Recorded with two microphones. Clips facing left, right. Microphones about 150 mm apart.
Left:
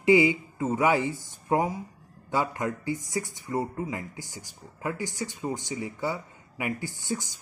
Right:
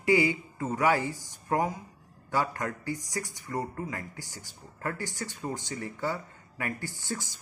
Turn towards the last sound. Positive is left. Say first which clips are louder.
# left 4 dB
turn(degrees=15)  # may be behind; listen again after turning